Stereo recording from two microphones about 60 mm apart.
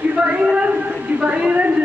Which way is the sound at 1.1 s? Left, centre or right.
Centre.